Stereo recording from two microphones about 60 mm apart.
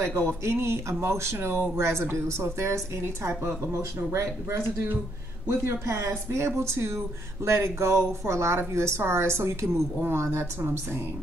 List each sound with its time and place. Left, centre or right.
0.5 s speech: right